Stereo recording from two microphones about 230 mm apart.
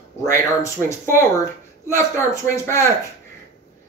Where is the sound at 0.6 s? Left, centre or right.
Centre.